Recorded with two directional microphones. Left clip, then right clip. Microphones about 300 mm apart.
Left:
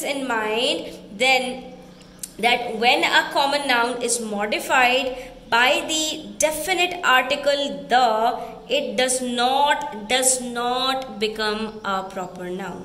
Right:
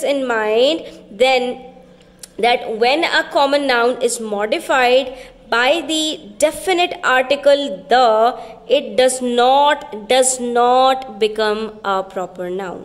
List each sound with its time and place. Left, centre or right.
0.0 s a woman's voice: centre
2.4 s a woman's voice: centre